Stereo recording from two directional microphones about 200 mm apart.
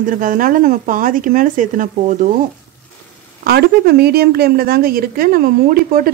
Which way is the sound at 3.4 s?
50° right (ahead or behind).